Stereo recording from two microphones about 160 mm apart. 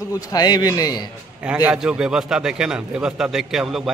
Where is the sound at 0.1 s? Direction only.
25° left (ahead or behind).